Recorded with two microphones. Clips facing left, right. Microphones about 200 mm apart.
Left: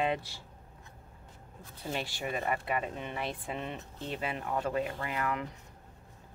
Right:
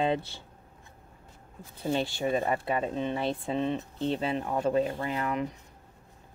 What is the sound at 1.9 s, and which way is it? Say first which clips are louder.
Speech: right 8 dB; 25° right (ahead or behind).